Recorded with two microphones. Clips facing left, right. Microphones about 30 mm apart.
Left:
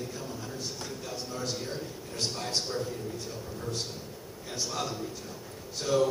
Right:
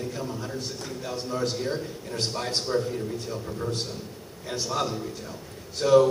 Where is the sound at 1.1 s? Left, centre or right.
Right.